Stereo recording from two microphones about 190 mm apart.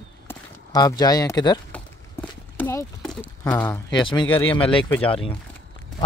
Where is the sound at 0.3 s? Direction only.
20° left (ahead or behind).